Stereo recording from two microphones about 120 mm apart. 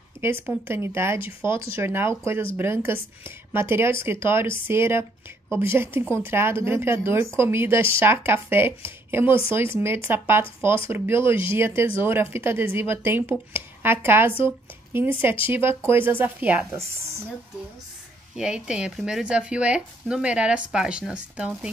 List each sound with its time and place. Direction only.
0.2 s a woman's voice: 20° right (ahead or behind)
18.3 s speech: 5° right (ahead or behind)